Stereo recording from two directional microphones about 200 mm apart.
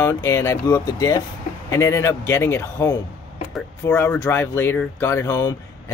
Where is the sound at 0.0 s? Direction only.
15° left (ahead or behind).